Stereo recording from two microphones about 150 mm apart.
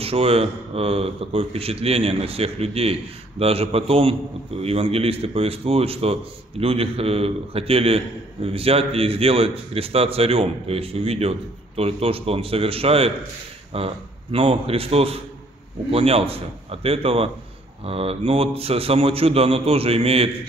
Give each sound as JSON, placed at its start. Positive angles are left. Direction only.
{"t": 0.0, "sound": "speech", "side_deg": -40}